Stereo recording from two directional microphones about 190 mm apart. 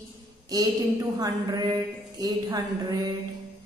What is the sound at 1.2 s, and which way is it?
Speech, 20° right (ahead or behind).